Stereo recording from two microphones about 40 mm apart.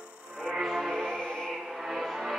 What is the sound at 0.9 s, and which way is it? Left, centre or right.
Music, centre.